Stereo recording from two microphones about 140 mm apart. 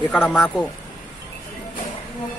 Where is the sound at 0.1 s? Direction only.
10° left (ahead or behind).